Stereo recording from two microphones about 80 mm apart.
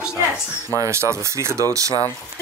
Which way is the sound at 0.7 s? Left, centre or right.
Right.